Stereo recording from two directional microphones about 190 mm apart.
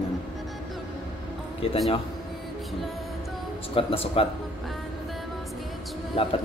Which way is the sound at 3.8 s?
30° left (ahead or behind).